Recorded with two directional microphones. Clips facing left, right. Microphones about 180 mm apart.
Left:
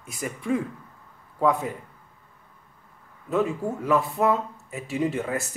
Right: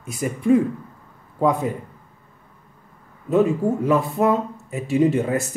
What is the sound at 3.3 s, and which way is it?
A man's voice, 25° right (ahead or behind).